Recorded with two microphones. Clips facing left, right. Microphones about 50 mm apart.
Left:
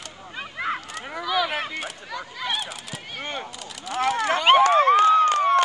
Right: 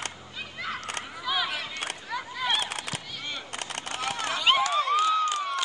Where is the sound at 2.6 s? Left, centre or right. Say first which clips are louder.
Right 2 dB; right.